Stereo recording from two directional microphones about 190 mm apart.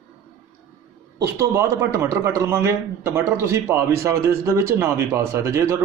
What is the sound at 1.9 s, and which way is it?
Speech, 15° right (ahead or behind).